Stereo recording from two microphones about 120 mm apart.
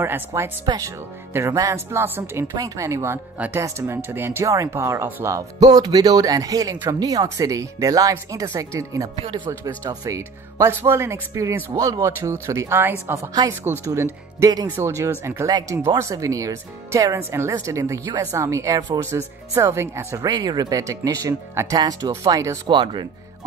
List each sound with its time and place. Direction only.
0.0 s speech: 20° right (ahead or behind)
2.5 s speech: 30° right (ahead or behind)
9.2 s speech: 40° right (ahead or behind)
9.5 s speech: 25° right (ahead or behind)
15.5 s speech: 35° right (ahead or behind)
22.7 s speech: 40° right (ahead or behind)